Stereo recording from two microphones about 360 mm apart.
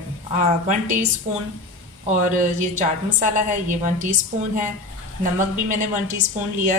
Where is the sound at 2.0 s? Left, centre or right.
Right.